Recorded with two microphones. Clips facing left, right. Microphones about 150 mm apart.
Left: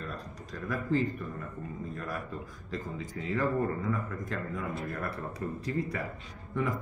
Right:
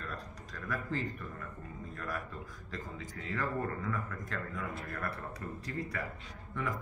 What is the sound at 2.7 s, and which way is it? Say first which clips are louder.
A man's voice: left 6 dB; 15° left (ahead or behind).